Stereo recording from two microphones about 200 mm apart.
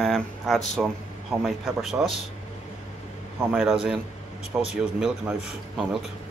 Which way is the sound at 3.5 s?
5° right (ahead or behind).